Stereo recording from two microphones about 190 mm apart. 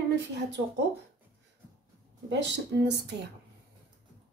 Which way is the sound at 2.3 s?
65° right (ahead or behind).